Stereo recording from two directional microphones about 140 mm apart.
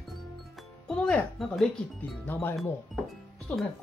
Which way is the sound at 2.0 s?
15° left (ahead or behind).